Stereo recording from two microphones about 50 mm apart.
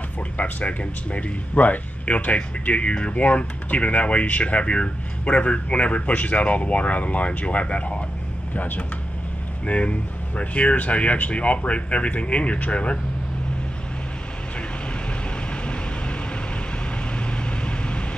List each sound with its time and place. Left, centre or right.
0.4 s speech: left
8.5 s speech: left
15.5 s vehicle: left
17.3 s vehicle: left